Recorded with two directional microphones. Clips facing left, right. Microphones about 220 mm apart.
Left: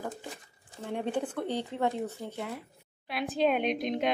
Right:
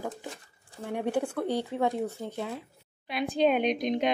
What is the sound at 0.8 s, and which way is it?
Speech, 10° right (ahead or behind).